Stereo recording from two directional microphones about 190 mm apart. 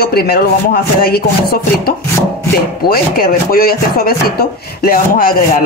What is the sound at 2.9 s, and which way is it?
Speech, 50° left (ahead or behind).